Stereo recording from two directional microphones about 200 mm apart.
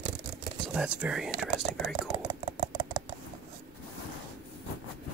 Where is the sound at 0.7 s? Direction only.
5° right (ahead or behind).